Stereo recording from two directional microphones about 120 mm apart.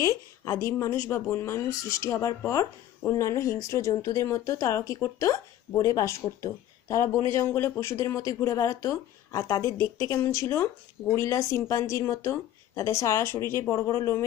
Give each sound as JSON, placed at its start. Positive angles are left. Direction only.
{"t": 0.0, "sound": "speech", "side_deg": 25}